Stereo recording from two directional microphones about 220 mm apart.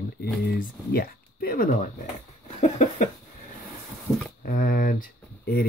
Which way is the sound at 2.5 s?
30° left (ahead or behind).